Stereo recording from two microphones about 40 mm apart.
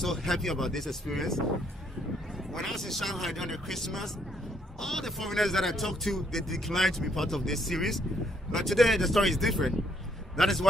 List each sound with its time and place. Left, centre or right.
0.0 s speech: centre
2.5 s speech: centre